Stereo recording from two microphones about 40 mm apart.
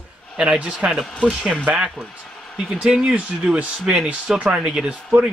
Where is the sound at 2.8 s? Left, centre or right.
Centre.